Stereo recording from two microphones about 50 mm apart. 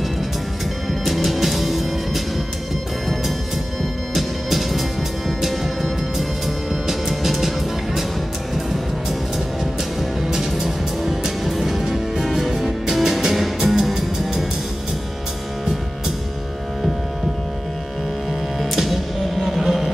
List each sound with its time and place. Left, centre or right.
1.0 s music: centre
4.1 s music: centre
10.2 s music: centre
18.6 s music: centre